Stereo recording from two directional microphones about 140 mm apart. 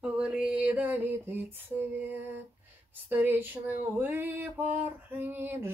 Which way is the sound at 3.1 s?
15° right (ahead or behind).